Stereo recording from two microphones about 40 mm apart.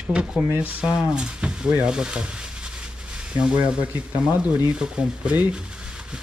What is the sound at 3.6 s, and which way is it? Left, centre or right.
Speech, right.